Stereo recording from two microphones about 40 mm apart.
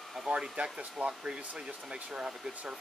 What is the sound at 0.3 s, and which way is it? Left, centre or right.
Speech, right.